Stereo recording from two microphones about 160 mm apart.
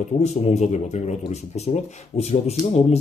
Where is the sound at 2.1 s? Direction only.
40° left (ahead or behind).